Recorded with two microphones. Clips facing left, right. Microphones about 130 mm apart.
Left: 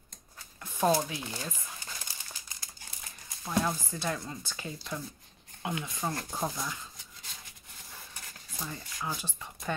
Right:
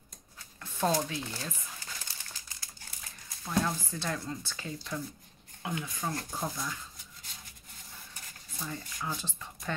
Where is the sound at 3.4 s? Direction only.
10° left (ahead or behind).